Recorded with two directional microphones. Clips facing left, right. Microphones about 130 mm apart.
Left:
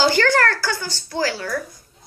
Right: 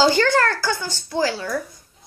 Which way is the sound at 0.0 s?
20° right (ahead or behind).